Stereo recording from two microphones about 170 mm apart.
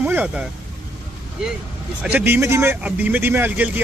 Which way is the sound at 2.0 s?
10° right (ahead or behind).